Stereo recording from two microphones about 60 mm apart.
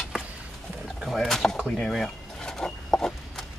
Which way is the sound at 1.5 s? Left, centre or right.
Centre.